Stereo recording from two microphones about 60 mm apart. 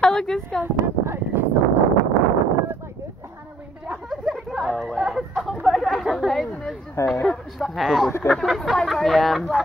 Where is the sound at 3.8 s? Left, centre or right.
Centre.